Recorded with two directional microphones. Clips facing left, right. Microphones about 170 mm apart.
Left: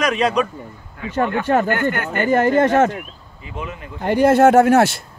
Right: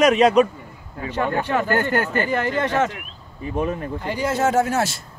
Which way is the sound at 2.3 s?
45° left (ahead or behind).